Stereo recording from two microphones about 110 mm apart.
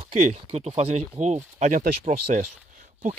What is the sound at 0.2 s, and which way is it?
Speech, 85° right.